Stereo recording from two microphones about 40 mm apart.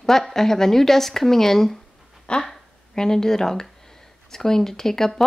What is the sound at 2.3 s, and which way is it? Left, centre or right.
Speech, left.